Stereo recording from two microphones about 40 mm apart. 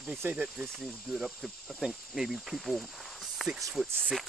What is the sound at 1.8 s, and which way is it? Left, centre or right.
Speech, centre.